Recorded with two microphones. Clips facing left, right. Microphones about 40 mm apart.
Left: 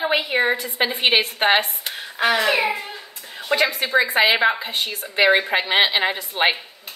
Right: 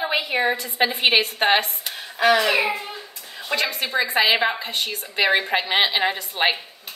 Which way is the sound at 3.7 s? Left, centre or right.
Left.